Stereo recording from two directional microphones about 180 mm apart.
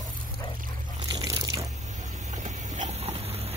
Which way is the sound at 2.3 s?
40° right (ahead or behind).